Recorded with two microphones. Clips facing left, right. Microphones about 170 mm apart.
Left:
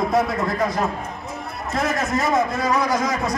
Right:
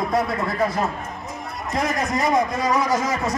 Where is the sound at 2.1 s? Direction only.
15° right (ahead or behind).